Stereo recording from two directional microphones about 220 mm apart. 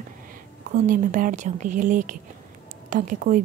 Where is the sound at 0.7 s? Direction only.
35° right (ahead or behind).